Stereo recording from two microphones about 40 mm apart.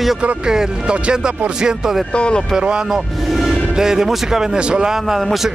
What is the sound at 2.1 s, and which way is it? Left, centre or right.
Speech, left.